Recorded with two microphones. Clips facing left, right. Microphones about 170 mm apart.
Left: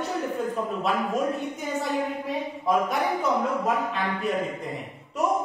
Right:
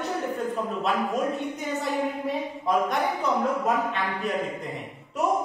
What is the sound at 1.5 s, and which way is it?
A woman's voice, centre (ahead or behind).